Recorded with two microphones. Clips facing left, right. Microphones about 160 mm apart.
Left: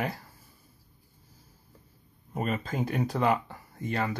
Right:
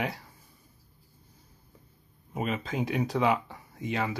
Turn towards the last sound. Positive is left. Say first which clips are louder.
# even
turn(degrees=0)  # may be behind; listen again after turning